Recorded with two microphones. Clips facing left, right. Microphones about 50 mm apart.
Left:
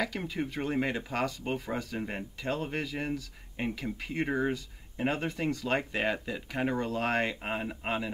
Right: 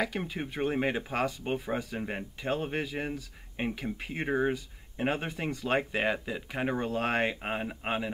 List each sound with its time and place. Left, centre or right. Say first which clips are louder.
0.0 s speech: even; centre